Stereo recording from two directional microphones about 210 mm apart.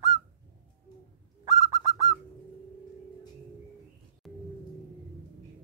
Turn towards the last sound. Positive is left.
turn(degrees=0)  # may be behind; listen again after turning